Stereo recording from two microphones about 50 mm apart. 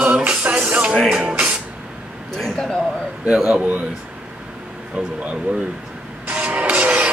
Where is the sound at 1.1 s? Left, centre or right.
Centre.